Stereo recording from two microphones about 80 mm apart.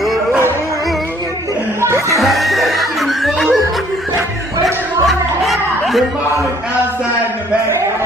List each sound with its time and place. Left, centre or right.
1.8 s music: right
2.1 s snicker: centre
5.0 s music: centre